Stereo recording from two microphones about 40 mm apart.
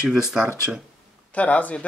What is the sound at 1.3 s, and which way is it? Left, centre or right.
Speech, left.